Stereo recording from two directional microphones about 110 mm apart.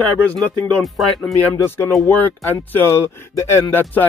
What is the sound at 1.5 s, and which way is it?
Speech, 25° left (ahead or behind).